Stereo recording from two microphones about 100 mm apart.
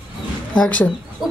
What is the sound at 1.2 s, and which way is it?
Chicken, centre (ahead or behind).